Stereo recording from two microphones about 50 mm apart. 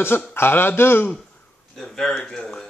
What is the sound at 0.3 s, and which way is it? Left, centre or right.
Speech, left.